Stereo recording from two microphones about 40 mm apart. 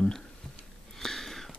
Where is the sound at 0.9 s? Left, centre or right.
Centre.